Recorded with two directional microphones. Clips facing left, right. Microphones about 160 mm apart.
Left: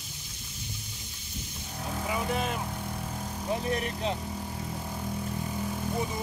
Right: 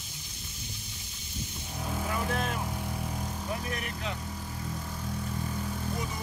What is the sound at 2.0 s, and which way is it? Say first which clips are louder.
Vehicle: left 2 dB; 5° left (ahead or behind).